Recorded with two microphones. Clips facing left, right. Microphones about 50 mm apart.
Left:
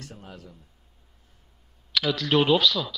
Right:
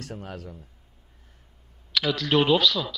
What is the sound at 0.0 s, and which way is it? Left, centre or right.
Speech, right.